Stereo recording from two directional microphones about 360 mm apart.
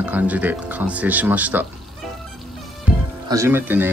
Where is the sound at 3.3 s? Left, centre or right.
Centre.